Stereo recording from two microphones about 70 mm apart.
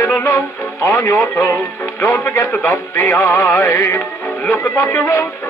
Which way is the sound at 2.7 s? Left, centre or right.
Left.